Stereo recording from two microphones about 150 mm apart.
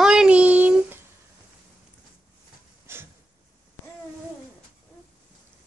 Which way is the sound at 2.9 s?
15° right (ahead or behind).